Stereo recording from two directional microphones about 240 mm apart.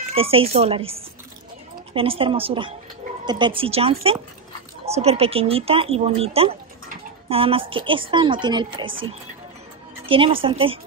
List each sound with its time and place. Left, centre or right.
0.1 s speech: right
2.0 s speech: right
10.0 s speech: right